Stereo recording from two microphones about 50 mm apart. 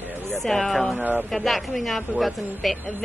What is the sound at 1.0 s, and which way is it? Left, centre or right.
Speech, right.